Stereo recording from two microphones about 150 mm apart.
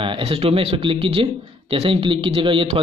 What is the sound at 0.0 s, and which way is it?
A man's voice, 40° right (ahead or behind).